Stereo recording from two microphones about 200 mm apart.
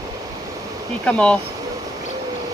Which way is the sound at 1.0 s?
5° left (ahead or behind).